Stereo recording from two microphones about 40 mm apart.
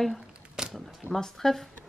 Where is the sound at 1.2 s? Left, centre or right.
Centre.